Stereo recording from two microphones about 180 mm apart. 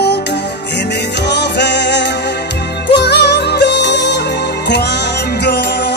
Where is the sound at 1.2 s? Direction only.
70° left (ahead or behind).